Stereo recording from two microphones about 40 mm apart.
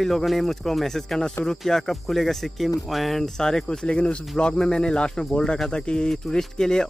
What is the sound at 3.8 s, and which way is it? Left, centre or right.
Speech, left.